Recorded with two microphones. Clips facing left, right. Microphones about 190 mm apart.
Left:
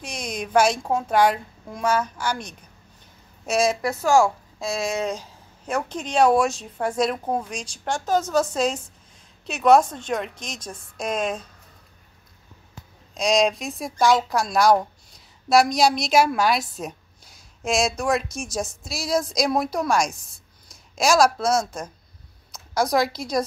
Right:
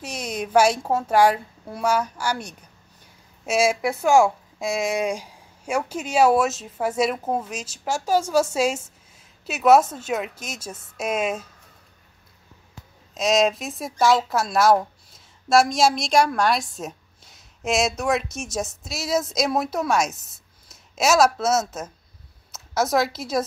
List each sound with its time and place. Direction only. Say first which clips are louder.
0.0 s a woman's voice: right 2 dB; 5° right (ahead or behind)
13.1 s a woman's voice: even; centre (ahead or behind)